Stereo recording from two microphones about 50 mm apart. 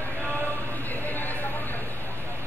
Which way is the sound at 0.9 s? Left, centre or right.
Left.